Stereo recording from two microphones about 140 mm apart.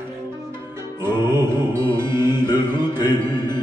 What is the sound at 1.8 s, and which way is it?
Music, 35° left (ahead or behind).